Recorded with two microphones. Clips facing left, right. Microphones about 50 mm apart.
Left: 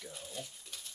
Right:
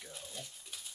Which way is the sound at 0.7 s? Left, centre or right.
Centre.